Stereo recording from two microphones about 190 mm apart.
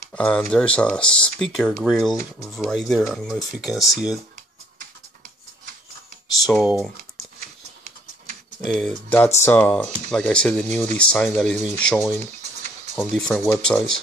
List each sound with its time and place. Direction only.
0.1 s speech: 5° left (ahead or behind)
6.4 s speech: centre (ahead or behind)
7.3 s a sound: 35° right (ahead or behind)
8.6 s speech: centre (ahead or behind)
12.2 s a sound: 35° right (ahead or behind)
12.9 s speech: centre (ahead or behind)